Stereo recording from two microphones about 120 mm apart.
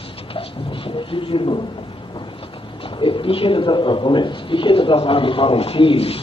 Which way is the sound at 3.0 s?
45° left (ahead or behind).